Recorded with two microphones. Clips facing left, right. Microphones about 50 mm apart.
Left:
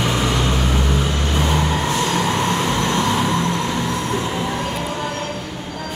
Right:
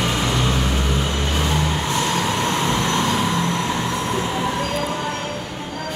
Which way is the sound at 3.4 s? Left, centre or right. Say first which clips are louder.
Left 1 dB; centre.